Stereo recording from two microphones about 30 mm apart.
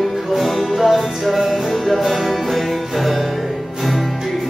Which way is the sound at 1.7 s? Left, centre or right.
Centre.